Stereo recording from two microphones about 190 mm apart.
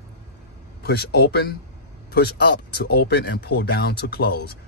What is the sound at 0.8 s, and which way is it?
Speech, 55° left (ahead or behind).